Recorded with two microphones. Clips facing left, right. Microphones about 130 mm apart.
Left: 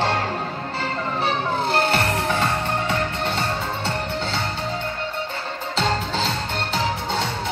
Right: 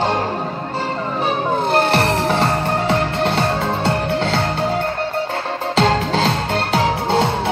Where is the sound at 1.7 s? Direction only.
60° right (ahead or behind).